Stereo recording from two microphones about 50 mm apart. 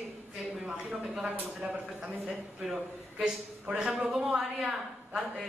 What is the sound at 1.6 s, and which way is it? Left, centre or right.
Speech, right.